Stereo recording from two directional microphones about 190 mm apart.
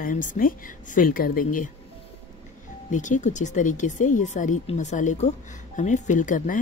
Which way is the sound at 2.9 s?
40° left (ahead or behind).